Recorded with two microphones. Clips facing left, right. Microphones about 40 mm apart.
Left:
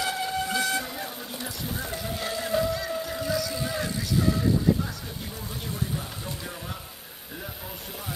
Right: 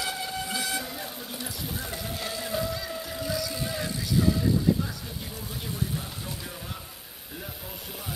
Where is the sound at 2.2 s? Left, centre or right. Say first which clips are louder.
Left 5 dB; centre.